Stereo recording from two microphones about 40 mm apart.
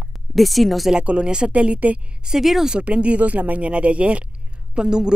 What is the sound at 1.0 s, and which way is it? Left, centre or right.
Speech, right.